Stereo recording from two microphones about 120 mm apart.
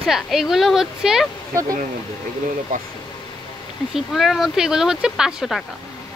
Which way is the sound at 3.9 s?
Centre (ahead or behind).